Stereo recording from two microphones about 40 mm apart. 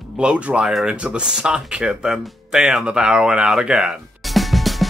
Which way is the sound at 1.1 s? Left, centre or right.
Right.